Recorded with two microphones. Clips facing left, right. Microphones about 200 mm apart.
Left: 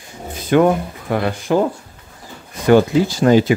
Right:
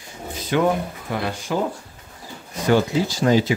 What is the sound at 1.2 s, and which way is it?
Speech, 55° left (ahead or behind).